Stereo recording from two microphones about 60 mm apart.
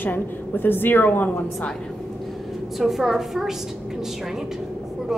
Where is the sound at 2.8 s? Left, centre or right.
Centre.